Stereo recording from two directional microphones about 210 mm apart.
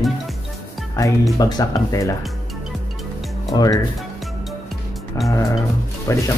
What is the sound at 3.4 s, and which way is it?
Speech, 15° left (ahead or behind).